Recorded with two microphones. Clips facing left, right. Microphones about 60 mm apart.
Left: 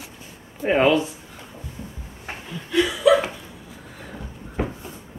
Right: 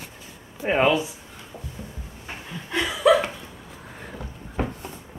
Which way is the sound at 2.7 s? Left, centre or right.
Right.